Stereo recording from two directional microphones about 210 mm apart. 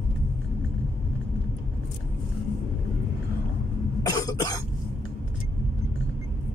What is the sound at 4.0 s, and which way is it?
Cough, 15° left (ahead or behind).